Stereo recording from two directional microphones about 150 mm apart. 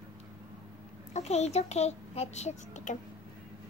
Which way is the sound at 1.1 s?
50° left (ahead or behind).